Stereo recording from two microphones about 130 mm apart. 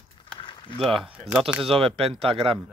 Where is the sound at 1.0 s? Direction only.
10° right (ahead or behind).